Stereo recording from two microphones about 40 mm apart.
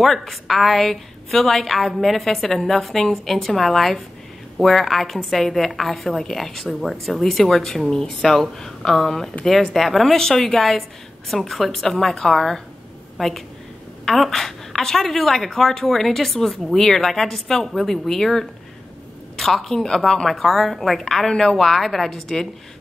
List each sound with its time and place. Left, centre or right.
0.0 s a woman's voice: centre
21.3 s a woman's voice: centre
21.5 s a woman's voice: centre